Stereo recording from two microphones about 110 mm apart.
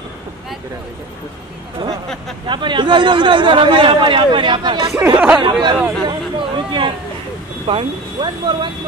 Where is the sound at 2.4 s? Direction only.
45° right (ahead or behind).